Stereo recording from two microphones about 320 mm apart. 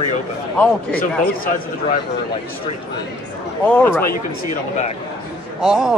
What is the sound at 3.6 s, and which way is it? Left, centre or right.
Speech, centre.